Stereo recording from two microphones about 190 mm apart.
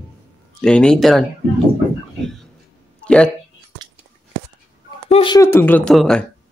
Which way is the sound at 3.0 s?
5° left (ahead or behind).